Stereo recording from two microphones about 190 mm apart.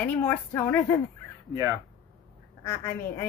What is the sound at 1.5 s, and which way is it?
Speech, 15° right (ahead or behind).